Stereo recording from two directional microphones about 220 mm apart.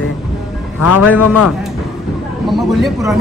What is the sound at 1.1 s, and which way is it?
Speech, 90° left.